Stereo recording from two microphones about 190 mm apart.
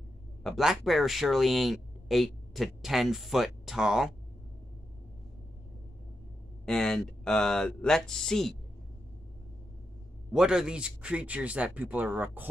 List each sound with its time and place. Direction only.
0.4 s speech: centre (ahead or behind)
6.6 s speech: 5° left (ahead or behind)
10.3 s speech: 5° right (ahead or behind)